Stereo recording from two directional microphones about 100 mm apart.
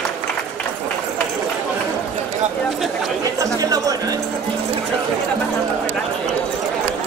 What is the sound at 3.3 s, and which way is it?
Music, 35° right (ahead or behind).